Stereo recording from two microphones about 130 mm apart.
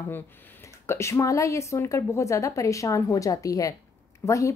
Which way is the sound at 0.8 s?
20° left (ahead or behind).